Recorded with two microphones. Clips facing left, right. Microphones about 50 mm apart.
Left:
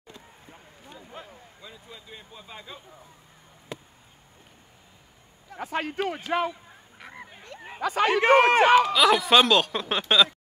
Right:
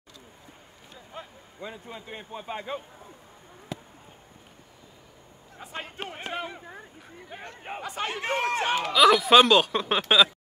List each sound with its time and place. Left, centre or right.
1.1 s a sound: centre
1.6 s speech: right
5.6 s speech: left
7.2 s a sound: right
7.9 s speech: left
8.9 s speech: centre